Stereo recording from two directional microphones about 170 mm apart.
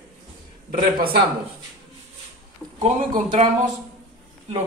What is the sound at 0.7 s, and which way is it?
Speech, 60° right (ahead or behind).